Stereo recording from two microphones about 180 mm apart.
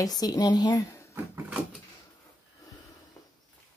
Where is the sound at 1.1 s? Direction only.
5° right (ahead or behind).